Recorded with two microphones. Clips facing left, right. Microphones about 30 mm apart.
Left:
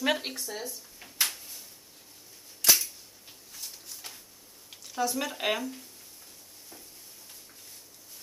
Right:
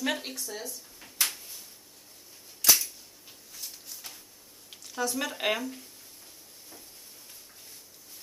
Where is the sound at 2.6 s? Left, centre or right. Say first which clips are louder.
Even; centre.